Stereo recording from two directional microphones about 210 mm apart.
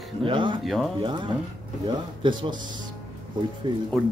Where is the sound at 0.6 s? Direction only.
Centre (ahead or behind).